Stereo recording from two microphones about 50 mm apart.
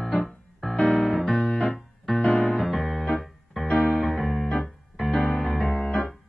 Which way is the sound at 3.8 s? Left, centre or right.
Centre.